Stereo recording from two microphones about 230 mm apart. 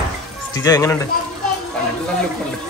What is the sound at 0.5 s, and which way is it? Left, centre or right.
Speech, centre.